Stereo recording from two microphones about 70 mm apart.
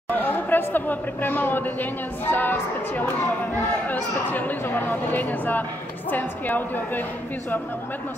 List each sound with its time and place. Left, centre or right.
0.1 s a woman's voice: left